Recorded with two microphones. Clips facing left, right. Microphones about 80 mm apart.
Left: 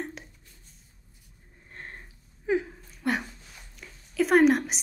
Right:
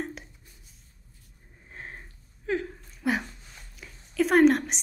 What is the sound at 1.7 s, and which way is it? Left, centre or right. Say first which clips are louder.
Sniff: right 1 dB; centre.